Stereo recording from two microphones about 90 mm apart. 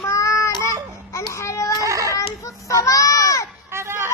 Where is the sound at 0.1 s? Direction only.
35° left (ahead or behind).